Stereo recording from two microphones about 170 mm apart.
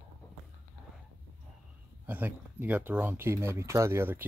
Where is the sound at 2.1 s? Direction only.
10° right (ahead or behind).